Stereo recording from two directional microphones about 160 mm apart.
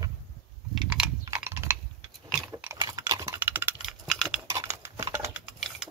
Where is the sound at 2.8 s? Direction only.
20° right (ahead or behind).